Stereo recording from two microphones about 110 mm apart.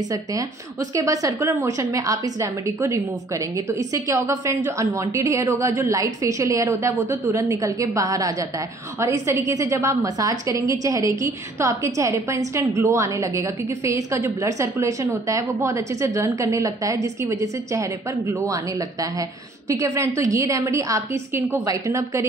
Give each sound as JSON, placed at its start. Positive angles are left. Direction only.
{"t": 0.1, "sound": "a woman's voice", "side_deg": -30}